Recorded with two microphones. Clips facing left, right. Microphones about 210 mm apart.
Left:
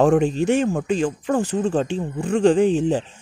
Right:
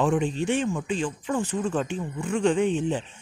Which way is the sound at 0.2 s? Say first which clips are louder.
Left 6 dB; 40° left (ahead or behind).